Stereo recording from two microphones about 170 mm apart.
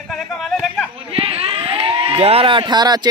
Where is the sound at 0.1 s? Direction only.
Centre (ahead or behind).